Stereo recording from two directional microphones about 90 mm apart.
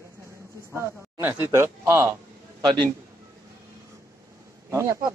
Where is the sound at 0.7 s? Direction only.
25° right (ahead or behind).